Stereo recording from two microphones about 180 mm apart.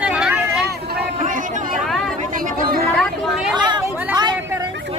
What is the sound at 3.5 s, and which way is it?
Chatter, 25° right (ahead or behind).